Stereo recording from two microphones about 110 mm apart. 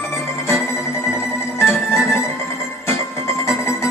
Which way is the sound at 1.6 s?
25° left (ahead or behind).